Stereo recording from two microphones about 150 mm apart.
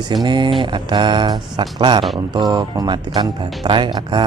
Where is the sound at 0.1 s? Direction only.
30° right (ahead or behind).